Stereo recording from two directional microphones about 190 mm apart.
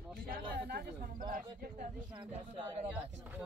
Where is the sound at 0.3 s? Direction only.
55° right (ahead or behind).